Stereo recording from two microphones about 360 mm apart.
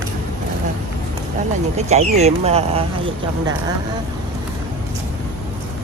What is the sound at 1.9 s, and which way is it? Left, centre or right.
Speech, centre.